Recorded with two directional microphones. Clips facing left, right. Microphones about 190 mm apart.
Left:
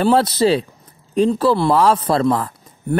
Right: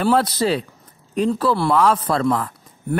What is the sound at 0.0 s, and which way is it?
A man's voice, 25° left (ahead or behind).